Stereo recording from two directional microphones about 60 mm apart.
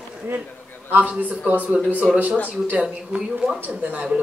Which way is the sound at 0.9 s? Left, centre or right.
Right.